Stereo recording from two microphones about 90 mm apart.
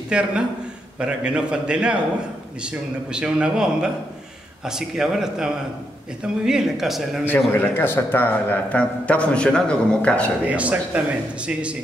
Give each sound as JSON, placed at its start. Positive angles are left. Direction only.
{"t": 0.1, "sound": "a man's voice", "side_deg": -10}
{"t": 7.2, "sound": "a man's voice", "side_deg": 25}
{"t": 10.4, "sound": "a man's voice", "side_deg": -15}